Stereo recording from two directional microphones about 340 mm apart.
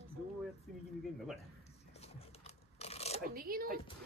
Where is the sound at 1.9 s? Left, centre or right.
Centre.